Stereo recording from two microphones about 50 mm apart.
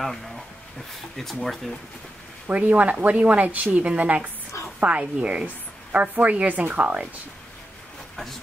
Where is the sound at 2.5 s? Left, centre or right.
Right.